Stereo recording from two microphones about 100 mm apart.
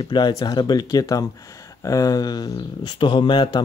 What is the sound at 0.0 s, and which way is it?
Speech, 50° left (ahead or behind).